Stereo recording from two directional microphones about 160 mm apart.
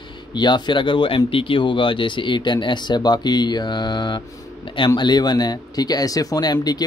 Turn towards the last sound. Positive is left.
turn(degrees=25)  # may be behind; listen again after turning